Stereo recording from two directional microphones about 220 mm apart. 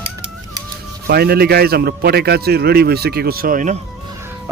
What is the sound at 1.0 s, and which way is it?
A man's voice, 45° right (ahead or behind).